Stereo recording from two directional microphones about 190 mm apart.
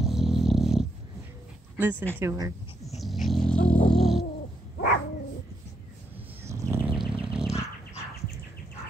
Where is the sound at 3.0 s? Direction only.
Centre (ahead or behind).